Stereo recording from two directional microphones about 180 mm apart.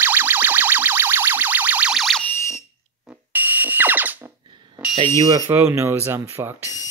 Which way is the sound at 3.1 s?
10° right (ahead or behind).